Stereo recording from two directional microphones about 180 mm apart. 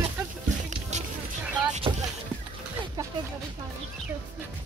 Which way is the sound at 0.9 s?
40° right (ahead or behind).